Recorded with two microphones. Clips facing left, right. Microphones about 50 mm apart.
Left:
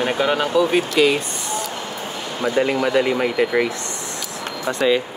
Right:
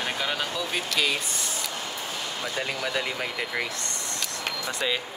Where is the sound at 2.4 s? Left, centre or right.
Left.